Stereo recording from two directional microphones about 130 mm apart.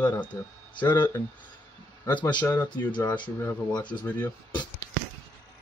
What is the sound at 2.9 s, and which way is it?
Speech, 35° left (ahead or behind).